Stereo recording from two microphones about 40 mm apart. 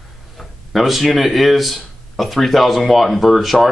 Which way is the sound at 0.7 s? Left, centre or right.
Centre.